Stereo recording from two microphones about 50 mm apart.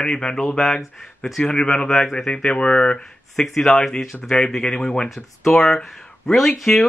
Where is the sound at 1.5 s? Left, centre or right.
Centre.